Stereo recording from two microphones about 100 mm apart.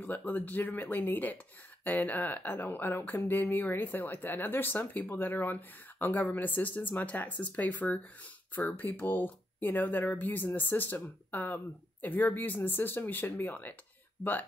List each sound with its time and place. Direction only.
0.0 s speech: 15° left (ahead or behind)